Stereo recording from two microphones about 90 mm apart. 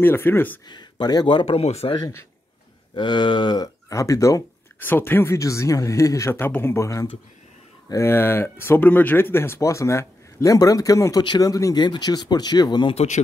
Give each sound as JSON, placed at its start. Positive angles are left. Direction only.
{"t": 0.0, "sound": "speech", "side_deg": 25}
{"t": 0.7, "sound": "speech", "side_deg": 55}
{"t": 3.0, "sound": "speech", "side_deg": 60}
{"t": 4.7, "sound": "speech", "side_deg": 25}